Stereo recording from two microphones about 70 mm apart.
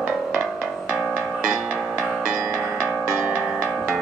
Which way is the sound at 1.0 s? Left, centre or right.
Centre.